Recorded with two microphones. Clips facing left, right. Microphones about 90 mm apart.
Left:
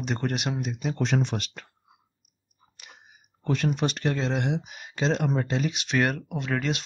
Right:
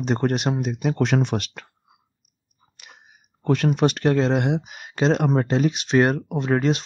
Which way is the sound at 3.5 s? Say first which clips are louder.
Right 6 dB; 65° right (ahead or behind).